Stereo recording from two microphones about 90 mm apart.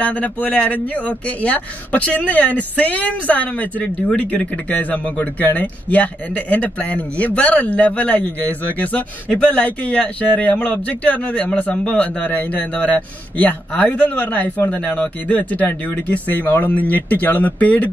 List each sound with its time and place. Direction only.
0.0 s speech: 15° left (ahead or behind)